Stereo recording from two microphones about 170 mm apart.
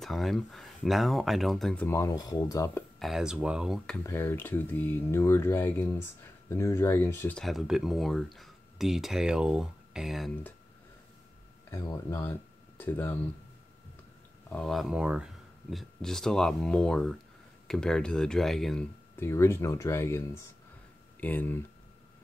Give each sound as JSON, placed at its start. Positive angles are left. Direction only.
{"t": 0.0, "sound": "speech", "side_deg": 0}
{"t": 1.9, "sound": "speech", "side_deg": 20}
{"t": 3.0, "sound": "speech", "side_deg": 0}
{"t": 4.0, "sound": "speech", "side_deg": 15}
{"t": 7.3, "sound": "speech", "side_deg": 0}
{"t": 11.7, "sound": "speech", "side_deg": 15}
{"t": 14.5, "sound": "speech", "side_deg": 0}
{"t": 19.1, "sound": "speech", "side_deg": 15}